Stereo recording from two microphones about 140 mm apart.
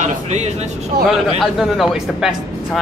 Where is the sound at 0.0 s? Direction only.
55° right (ahead or behind).